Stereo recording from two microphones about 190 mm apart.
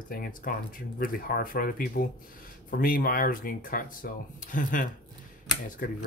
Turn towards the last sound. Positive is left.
turn(degrees=50)  # may be behind; listen again after turning